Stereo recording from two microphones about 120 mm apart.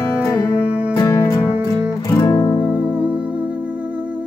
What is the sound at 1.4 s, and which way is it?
Music, 10° right (ahead or behind).